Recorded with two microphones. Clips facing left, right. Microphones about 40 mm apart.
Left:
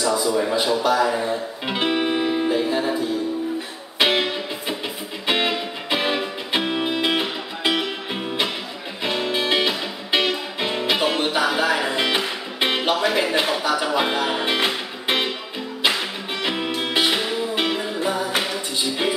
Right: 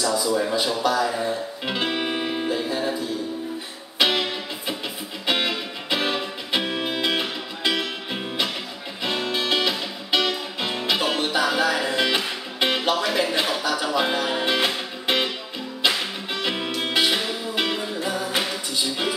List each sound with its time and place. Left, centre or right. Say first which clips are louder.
0.0 s a sound: left 2 dB; left
0.6 s a man's voice: left 3 dB; left
1.7 s music: left 3 dB; left
2.0 s music: left 5 dB; centre
2.5 s music: left 4 dB; left
4.0 s music: left 2 dB; left
6.6 s music: left 3 dB; centre
7.1 s music: left 2 dB; left
9.2 s music: left 2 dB; left
16.3 s music: left 2 dB; centre